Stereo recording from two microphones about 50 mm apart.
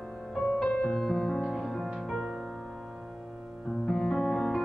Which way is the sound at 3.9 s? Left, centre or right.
Centre.